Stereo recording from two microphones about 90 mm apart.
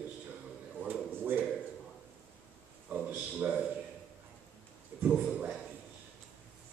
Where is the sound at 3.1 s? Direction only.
15° right (ahead or behind).